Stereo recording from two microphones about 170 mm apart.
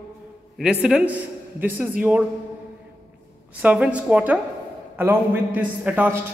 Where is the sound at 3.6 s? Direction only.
10° right (ahead or behind).